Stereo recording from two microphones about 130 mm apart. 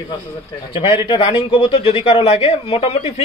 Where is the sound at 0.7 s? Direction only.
40° left (ahead or behind).